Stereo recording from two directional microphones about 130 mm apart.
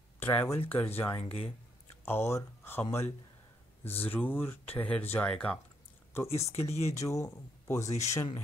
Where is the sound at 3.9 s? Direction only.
15° left (ahead or behind).